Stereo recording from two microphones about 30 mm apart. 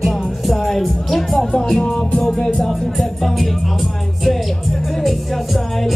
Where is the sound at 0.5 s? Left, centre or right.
Centre.